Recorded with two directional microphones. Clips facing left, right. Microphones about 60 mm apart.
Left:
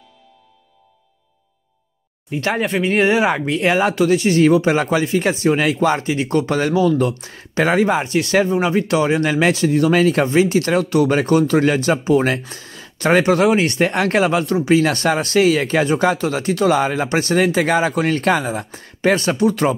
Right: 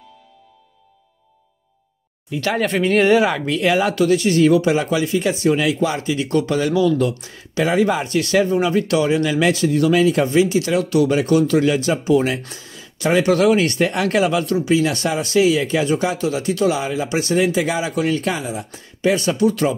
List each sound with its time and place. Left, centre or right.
2.3 s speech: left
2.6 s speech: centre
2.9 s speech: left
12.5 s a sound: left
13.2 s speech: left
14.7 s speech: left
17.6 s speech: left
18.9 s speech: left